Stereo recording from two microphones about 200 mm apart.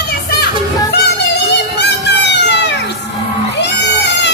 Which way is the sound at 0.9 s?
55° left (ahead or behind).